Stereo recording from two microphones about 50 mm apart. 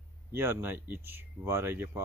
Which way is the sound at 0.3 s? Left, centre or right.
Right.